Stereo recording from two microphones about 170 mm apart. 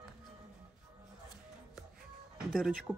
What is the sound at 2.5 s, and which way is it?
Speech, centre (ahead or behind).